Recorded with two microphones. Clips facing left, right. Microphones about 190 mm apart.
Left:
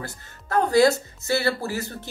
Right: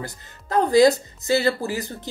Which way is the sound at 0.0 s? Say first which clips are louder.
Right 2 dB; 15° right (ahead or behind).